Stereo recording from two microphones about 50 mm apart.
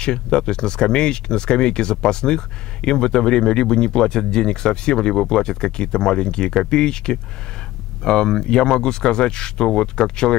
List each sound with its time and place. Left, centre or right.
0.0 s speech: centre